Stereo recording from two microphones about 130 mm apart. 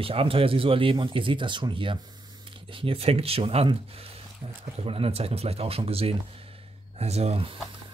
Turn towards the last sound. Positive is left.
turn(degrees=-50)  # may be behind; listen again after turning